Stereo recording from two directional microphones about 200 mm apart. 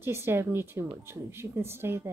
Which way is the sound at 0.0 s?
10° right (ahead or behind).